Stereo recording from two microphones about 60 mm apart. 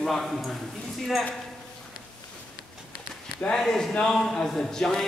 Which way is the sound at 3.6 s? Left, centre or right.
Centre.